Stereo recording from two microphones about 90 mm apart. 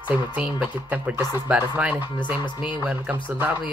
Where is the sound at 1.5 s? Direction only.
15° right (ahead or behind).